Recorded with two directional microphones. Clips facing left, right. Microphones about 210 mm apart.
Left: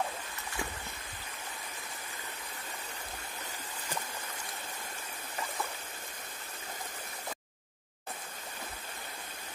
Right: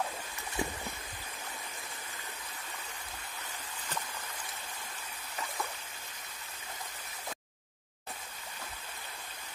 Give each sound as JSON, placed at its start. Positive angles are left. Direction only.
{"t": 0.6, "sound": "boat", "side_deg": -20}